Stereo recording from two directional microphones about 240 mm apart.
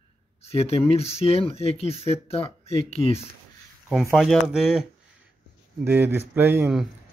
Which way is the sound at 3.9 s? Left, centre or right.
Centre.